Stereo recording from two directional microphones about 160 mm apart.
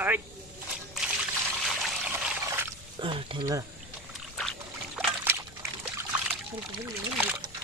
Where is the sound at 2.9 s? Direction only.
35° right (ahead or behind).